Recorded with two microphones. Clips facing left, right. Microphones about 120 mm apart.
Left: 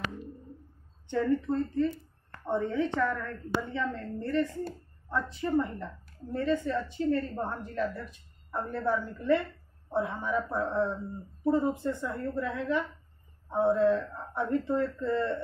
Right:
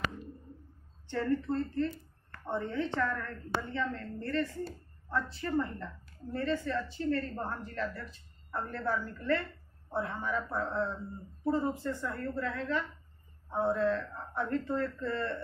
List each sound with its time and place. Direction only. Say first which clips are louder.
1.1 s a woman's voice: left 3 dB; 10° left (ahead or behind)
4.2 s a woman's voice: left 4 dB; 20° left (ahead or behind)